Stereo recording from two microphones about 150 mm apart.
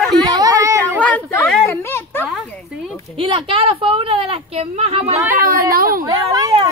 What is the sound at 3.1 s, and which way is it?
A woman's voice, 35° right (ahead or behind).